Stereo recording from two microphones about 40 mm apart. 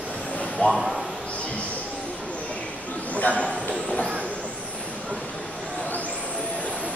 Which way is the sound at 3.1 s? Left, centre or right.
Left.